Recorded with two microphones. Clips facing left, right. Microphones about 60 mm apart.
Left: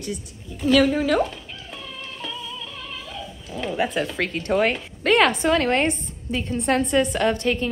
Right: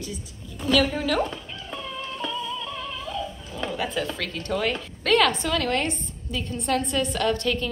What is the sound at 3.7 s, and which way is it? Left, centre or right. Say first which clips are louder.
A woman's voice: left 6 dB; left.